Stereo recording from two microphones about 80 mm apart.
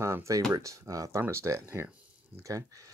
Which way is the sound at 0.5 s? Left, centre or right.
Right.